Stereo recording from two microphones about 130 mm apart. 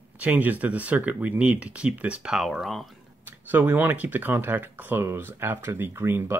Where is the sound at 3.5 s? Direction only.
15° right (ahead or behind).